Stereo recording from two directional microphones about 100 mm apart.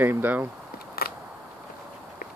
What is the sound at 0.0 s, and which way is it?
Speech, 20° right (ahead or behind).